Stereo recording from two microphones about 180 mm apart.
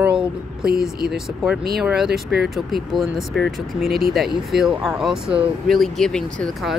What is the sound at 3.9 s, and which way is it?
Speech, 55° right (ahead or behind).